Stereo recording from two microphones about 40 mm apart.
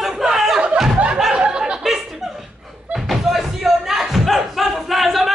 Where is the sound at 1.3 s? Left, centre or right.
Right.